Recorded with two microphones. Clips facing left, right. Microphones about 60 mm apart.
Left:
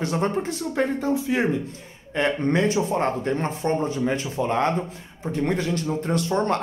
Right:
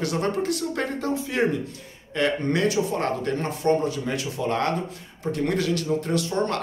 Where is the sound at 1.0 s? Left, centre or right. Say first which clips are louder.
Left 3 dB; centre.